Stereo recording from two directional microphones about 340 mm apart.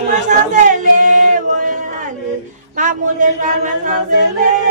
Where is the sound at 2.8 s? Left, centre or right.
Right.